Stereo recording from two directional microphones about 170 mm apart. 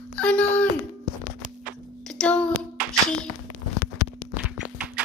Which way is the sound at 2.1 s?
5° left (ahead or behind).